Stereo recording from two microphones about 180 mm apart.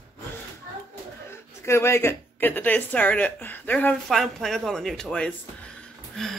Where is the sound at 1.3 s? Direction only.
15° left (ahead or behind).